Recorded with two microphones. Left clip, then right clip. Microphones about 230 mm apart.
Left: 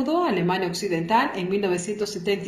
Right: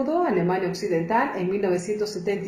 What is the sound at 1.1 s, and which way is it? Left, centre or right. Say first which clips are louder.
Speech: left 4 dB; left.